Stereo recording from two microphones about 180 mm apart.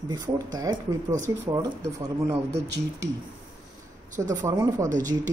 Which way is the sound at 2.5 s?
70° right (ahead or behind).